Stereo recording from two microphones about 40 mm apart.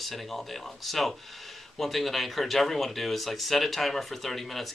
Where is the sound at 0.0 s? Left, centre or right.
Centre.